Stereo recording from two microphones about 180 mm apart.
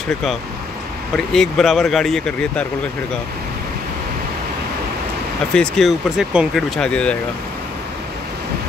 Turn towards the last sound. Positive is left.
turn(degrees=5)  # may be behind; listen again after turning